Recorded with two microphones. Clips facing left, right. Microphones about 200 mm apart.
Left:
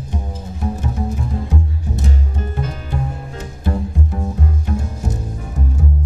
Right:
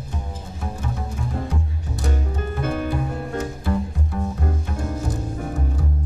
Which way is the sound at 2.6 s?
60° right (ahead or behind).